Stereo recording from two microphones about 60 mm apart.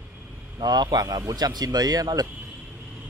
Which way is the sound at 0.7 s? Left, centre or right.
Right.